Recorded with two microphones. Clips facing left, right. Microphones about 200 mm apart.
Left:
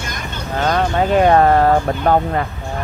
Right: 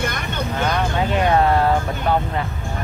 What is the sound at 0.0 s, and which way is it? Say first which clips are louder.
Vehicle: right 4 dB; 55° right (ahead or behind).